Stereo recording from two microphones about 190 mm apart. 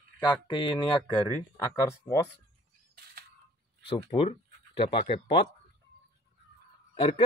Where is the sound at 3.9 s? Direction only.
30° left (ahead or behind).